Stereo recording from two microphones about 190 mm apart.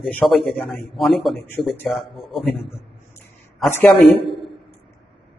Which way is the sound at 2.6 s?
30° left (ahead or behind).